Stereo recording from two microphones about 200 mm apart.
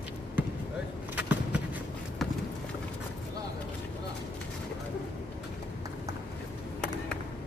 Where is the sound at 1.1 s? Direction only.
5° right (ahead or behind).